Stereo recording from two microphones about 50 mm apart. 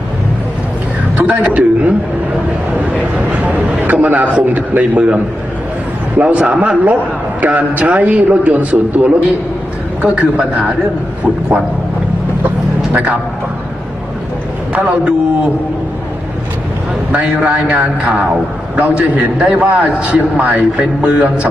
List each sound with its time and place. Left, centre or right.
1.1 s a sound: right
3.9 s a man's voice: right
12.9 s a man's voice: right
14.7 s a man's voice: right
17.5 s a man's voice: right